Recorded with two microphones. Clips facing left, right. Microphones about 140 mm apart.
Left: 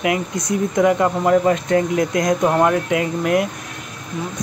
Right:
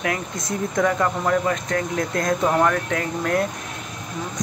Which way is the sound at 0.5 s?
20° left (ahead or behind).